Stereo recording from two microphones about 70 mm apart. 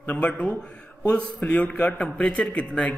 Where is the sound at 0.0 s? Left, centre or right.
Left.